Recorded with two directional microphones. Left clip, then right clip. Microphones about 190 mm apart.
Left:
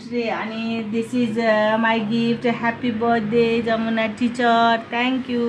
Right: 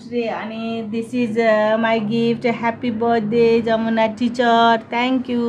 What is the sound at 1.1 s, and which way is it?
Speech, 35° right (ahead or behind).